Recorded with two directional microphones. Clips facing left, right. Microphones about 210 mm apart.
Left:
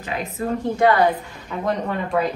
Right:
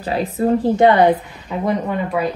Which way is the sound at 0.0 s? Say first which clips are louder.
Right 7 dB; 35° right (ahead or behind).